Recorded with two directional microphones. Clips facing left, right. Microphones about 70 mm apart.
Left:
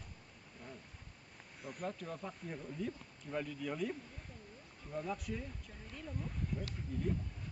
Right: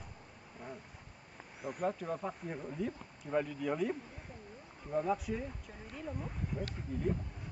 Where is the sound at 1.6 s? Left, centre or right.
Centre.